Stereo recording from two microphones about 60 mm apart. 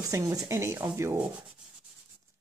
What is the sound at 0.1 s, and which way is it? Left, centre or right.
Speech, right.